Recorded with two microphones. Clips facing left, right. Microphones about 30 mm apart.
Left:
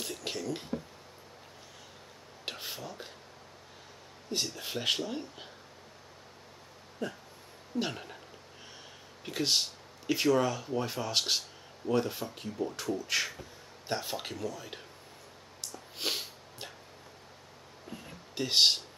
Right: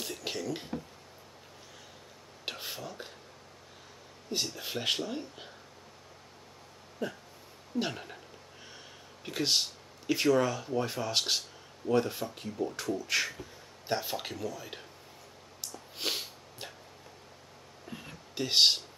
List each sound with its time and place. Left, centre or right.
0.0 s a sound: centre
2.4 s a sound: centre
4.3 s speech: centre
7.0 s speech: centre
9.2 s speech: centre
15.6 s snort: centre
18.3 s speech: centre